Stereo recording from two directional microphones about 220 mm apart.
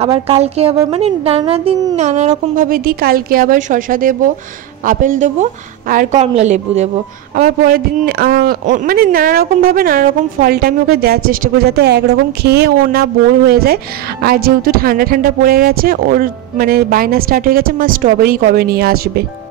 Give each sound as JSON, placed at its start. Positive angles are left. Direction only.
{"t": 0.0, "sound": "speech", "side_deg": -25}
{"t": 7.3, "sound": "a man's voice", "side_deg": -40}